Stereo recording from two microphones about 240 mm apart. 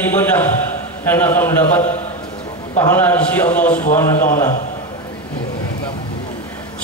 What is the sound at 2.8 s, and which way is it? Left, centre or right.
A man's voice, centre.